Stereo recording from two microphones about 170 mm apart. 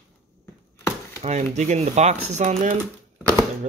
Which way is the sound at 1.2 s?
40° right (ahead or behind).